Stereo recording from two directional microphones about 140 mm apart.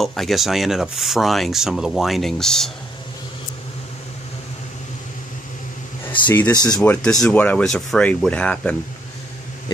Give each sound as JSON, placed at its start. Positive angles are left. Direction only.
{"t": 0.0, "sound": "speech", "side_deg": 0}
{"t": 6.5, "sound": "speech", "side_deg": 30}
{"t": 6.8, "sound": "speech", "side_deg": 10}